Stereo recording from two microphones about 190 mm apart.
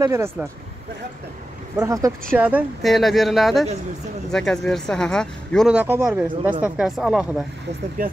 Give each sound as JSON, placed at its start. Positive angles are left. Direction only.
{"t": 0.0, "sound": "speech", "side_deg": -15}
{"t": 1.8, "sound": "speech", "side_deg": -20}